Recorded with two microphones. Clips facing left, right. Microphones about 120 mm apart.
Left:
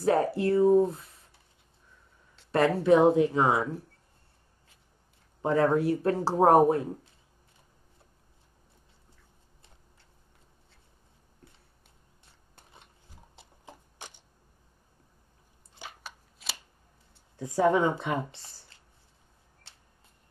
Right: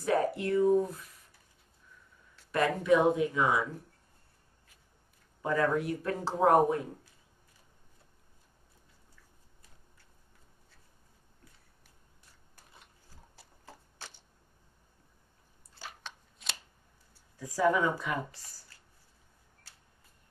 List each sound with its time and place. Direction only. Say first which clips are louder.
0.0 s speech: left 4 dB; 30° left (ahead or behind)
5.4 s speech: left 5 dB; 25° left (ahead or behind)
12.3 s a sound: left 3 dB; 25° left (ahead or behind)
16.0 s scissors: left 1 dB; 5° left (ahead or behind)
17.1 s speech: left 8 dB; 25° left (ahead or behind)